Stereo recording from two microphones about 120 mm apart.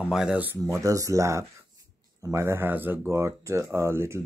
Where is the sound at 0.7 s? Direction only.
25° right (ahead or behind).